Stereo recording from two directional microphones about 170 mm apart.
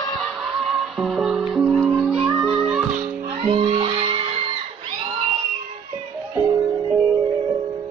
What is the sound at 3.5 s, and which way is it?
Music, 30° right (ahead or behind).